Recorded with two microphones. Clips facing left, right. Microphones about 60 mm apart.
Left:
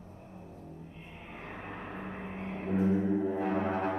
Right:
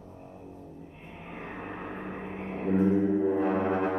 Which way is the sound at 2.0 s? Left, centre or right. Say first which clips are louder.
Right 3 dB; right.